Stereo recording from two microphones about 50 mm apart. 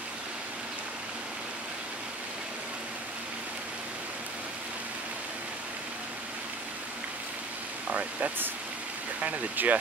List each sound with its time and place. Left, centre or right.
7.9 s speech: right